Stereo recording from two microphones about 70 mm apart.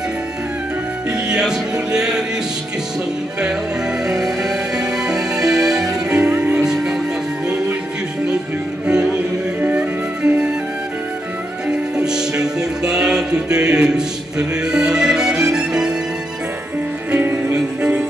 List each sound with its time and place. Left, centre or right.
1.3 s music: centre
4.1 s music: centre
8.8 s music: centre
12.0 s music: centre
17.1 s music: centre